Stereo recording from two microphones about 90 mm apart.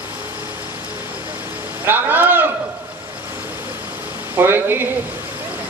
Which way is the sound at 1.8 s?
20° right (ahead or behind).